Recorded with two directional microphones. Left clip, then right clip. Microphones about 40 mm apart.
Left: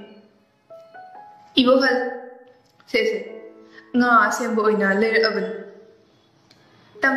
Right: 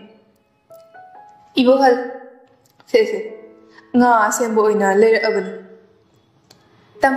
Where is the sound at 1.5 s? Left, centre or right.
Right.